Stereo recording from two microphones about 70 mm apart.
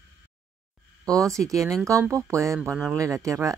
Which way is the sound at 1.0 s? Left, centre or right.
Right.